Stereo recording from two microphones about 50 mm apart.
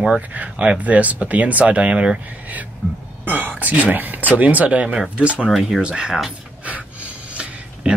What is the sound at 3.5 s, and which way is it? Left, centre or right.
Speech, right.